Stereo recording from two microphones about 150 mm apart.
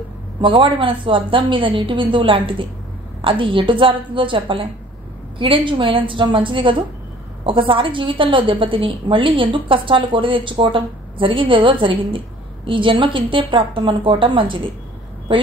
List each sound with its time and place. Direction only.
0.4 s a woman's voice: 35° right (ahead or behind)